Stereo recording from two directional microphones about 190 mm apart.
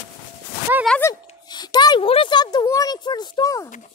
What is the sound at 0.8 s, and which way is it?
Speech, 5° left (ahead or behind).